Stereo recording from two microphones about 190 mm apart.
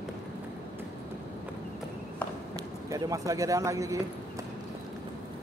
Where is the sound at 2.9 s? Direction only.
20° right (ahead or behind).